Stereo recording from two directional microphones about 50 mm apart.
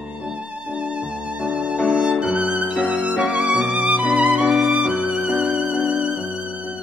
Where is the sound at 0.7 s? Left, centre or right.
Right.